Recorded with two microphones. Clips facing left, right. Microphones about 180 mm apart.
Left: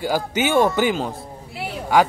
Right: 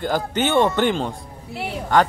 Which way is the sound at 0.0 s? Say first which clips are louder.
Even; 10° left (ahead or behind).